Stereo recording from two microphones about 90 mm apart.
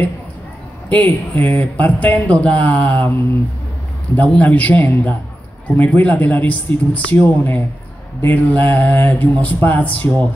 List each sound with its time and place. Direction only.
0.8 s speech: 20° left (ahead or behind)
4.1 s speech: 15° left (ahead or behind)